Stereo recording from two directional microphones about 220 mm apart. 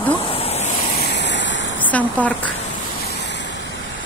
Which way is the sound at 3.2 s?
55° left (ahead or behind).